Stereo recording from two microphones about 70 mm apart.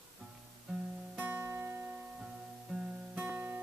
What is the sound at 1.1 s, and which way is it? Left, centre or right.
Music, right.